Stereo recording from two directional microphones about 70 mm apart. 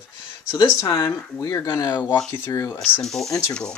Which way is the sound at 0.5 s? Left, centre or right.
Left.